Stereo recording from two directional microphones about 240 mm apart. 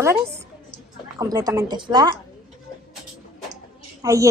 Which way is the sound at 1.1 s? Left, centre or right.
Centre.